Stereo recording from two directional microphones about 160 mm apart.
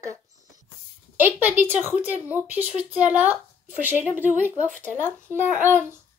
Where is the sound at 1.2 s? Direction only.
10° right (ahead or behind).